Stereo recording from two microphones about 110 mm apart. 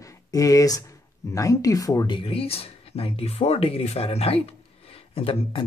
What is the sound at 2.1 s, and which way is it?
Speech, 55° left (ahead or behind).